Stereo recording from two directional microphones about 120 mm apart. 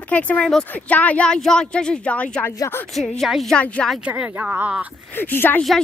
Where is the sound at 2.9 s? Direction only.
Centre (ahead or behind).